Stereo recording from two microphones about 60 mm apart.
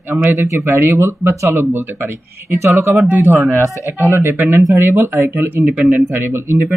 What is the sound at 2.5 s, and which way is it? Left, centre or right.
Speech, right.